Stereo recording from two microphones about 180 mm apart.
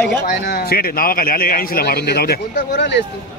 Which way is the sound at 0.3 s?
55° left (ahead or behind).